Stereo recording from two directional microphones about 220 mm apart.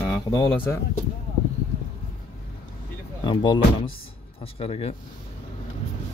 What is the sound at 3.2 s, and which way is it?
Speech, 20° left (ahead or behind).